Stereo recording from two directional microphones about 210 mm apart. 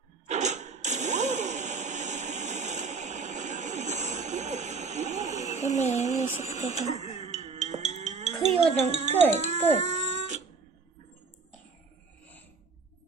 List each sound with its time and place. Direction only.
0.3 s a sound: 35° right (ahead or behind)
5.6 s speech: 30° left (ahead or behind)
6.0 s music: 35° right (ahead or behind)
9.3 s speech: 35° right (ahead or behind)
9.8 s cat: 35° right (ahead or behind)